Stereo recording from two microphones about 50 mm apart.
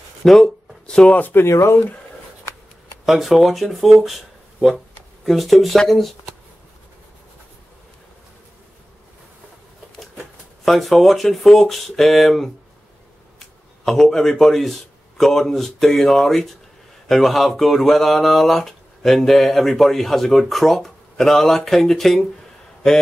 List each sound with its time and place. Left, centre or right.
0.2 s a sound: centre
1.5 s speech: left
3.1 s speech: centre
10.6 s speech: centre
13.8 s speech: centre